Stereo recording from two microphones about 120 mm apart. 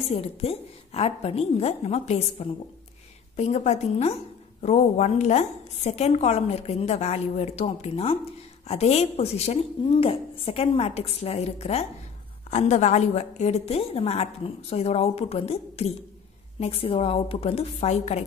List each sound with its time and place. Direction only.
0.1 s a woman's voice: 55° left (ahead or behind)
12.4 s a woman's voice: 70° left (ahead or behind)